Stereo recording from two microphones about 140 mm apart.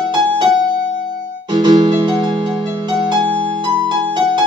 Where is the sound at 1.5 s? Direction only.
35° right (ahead or behind).